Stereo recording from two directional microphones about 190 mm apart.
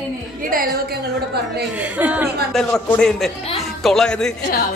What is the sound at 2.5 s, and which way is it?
A woman's voice, 5° left (ahead or behind).